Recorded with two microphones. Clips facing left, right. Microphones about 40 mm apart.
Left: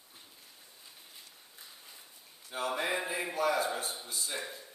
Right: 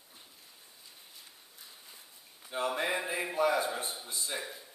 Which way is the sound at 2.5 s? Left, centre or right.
Centre.